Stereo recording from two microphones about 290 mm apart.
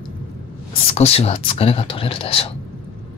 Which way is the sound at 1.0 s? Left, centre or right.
Left.